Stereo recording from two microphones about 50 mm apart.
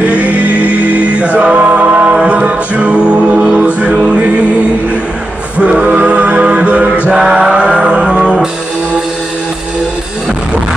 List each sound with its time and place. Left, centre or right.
0.0 s music: right
5.6 s music: right
7.1 s chant: centre
8.2 s music: centre